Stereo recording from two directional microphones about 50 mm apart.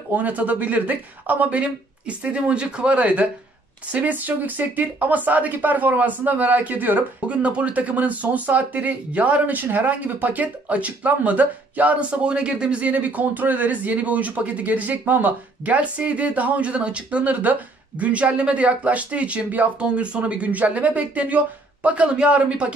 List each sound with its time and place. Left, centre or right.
0.1 s speech: right
7.2 s speech: right
12.9 s speech: right